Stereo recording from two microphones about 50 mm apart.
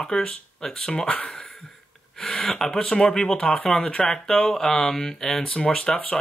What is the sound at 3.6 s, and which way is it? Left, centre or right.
Speech, centre.